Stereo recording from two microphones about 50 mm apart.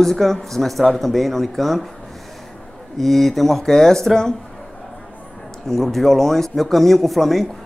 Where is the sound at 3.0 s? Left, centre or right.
Centre.